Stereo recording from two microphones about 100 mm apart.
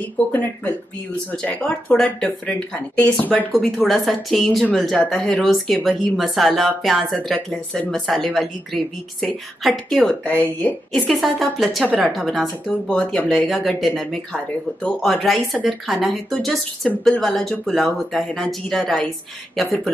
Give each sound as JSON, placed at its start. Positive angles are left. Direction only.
{"t": 0.3, "sound": "speech", "side_deg": 15}
{"t": 3.7, "sound": "a woman's voice", "side_deg": 0}
{"t": 13.5, "sound": "a woman's voice", "side_deg": 0}
{"t": 14.3, "sound": "a woman's voice", "side_deg": 10}